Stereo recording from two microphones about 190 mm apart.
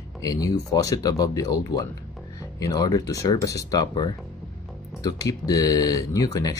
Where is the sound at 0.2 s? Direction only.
20° left (ahead or behind).